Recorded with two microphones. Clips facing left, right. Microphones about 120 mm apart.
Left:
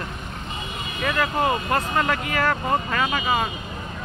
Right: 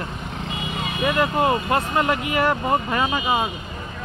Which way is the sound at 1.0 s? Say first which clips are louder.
Right 3 dB; 20° right (ahead or behind).